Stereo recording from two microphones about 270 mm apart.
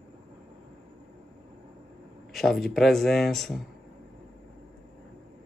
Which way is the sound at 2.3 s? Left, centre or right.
Centre.